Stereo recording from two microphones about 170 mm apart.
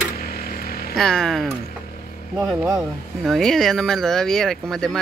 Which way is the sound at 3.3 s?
Centre (ahead or behind).